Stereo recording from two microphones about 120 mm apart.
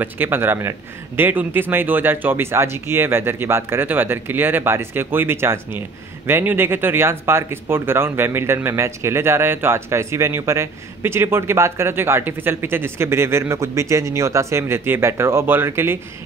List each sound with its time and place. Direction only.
0.0 s speech: 15° right (ahead or behind)